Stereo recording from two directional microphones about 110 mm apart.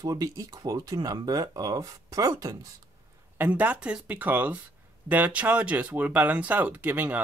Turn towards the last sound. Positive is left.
turn(degrees=-15)  # may be behind; listen again after turning